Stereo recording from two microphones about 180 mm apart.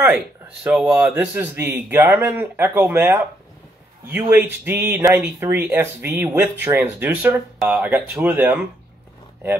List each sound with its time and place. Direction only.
0.7 s speech: 5° right (ahead or behind)